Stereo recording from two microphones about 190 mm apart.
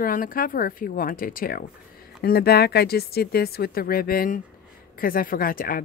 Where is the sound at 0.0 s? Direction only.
50° left (ahead or behind).